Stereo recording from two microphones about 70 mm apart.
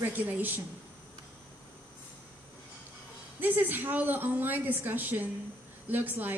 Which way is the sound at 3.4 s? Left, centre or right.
Right.